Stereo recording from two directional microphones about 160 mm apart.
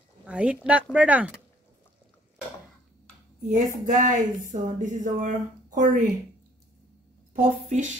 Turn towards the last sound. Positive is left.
turn(degrees=-50)  # may be behind; listen again after turning